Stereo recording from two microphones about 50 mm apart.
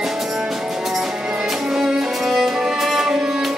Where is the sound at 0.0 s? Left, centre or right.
Centre.